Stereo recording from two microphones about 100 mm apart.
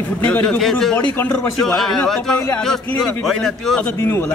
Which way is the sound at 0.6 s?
5° left (ahead or behind).